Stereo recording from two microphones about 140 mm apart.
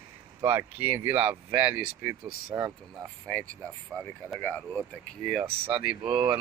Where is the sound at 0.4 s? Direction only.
15° right (ahead or behind).